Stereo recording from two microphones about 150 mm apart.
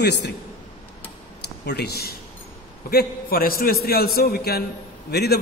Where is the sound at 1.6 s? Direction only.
90° left.